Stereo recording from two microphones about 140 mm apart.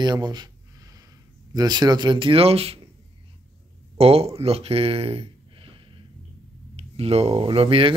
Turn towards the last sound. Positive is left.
turn(degrees=-40)  # may be behind; listen again after turning